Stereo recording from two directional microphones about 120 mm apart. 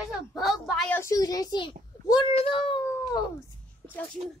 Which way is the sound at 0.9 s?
25° left (ahead or behind).